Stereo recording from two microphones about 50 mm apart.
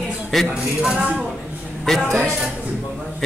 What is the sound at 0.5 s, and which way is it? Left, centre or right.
Speech, right.